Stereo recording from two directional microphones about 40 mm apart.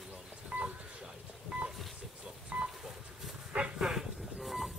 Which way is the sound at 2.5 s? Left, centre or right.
Right.